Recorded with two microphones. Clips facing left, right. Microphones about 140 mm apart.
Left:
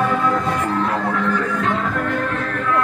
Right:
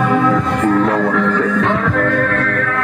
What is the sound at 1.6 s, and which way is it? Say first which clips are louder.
Music: right 5 dB; 80° right.